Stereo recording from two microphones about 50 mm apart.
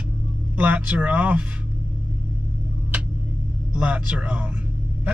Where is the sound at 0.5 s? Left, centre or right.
Right.